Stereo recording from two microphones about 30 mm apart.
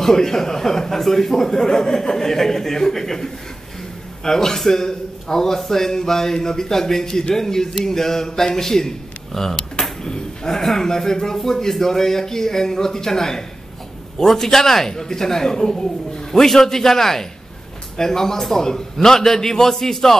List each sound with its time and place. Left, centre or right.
0.0 s speech: centre
10.0 s a sound: left
10.6 s speech: centre